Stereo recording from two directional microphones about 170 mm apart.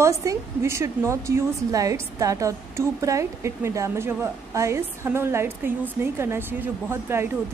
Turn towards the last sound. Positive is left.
turn(degrees=-15)  # may be behind; listen again after turning